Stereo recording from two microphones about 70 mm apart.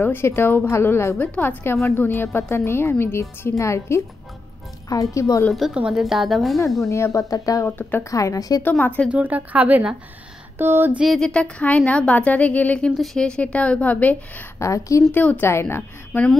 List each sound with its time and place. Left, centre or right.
0.0 s a woman's voice: left
5.8 s a woman's voice: centre
6.9 s speech: left
7.6 s a woman's voice: left
8.0 s speech: left
8.6 s a woman's voice: left
9.1 s speech: right
10.6 s a sound: right
11.1 s a woman's voice: centre
12.9 s a woman's voice: centre
13.2 s a woman's voice: centre
14.6 s speech: left
15.1 s a woman's voice: left
15.4 s a woman's voice: left